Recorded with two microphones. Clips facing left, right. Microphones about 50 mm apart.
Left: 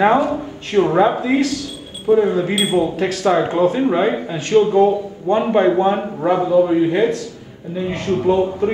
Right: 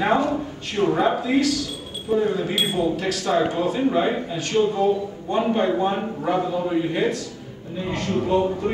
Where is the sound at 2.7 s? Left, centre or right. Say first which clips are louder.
Left 5 dB; left.